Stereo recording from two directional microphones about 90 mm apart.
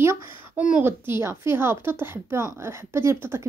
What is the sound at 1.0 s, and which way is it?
A woman's voice, 30° right (ahead or behind).